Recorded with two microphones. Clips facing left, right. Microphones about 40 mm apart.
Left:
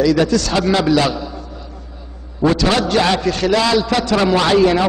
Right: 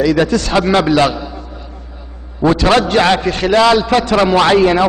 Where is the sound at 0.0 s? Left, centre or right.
Right.